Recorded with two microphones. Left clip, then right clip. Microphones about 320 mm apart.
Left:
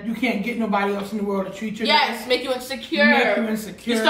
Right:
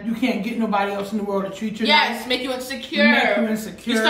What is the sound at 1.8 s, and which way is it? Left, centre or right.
A woman's voice, centre.